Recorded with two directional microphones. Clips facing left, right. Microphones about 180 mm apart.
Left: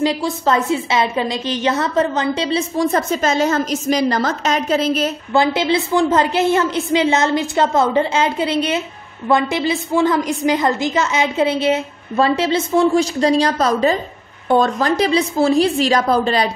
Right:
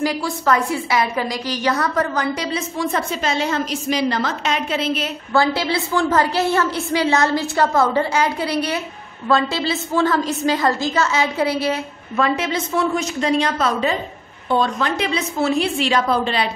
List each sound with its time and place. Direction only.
0.0 s a woman's voice: 25° left (ahead or behind)
2.8 s a woman's voice: 40° left (ahead or behind)
5.3 s a woman's voice: 20° left (ahead or behind); by 16.4 s 40° left (ahead or behind)